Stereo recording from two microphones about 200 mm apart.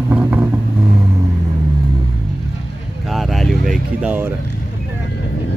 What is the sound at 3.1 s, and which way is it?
Vehicle, centre (ahead or behind).